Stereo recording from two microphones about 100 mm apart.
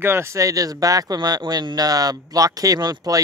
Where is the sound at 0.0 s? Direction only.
25° right (ahead or behind).